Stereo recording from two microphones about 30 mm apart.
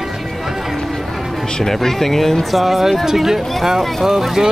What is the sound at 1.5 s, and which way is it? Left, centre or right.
Speech, left.